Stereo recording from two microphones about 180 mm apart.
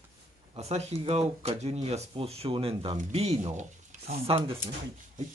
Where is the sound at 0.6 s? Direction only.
35° right (ahead or behind).